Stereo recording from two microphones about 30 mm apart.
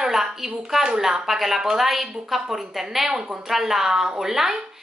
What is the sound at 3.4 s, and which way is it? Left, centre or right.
A woman's voice, centre.